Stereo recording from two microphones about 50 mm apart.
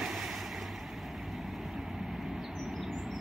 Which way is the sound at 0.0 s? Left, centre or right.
Centre.